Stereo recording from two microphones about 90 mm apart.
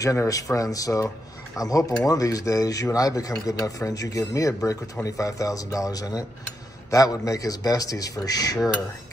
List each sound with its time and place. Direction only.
0.0 s speech: 35° left (ahead or behind)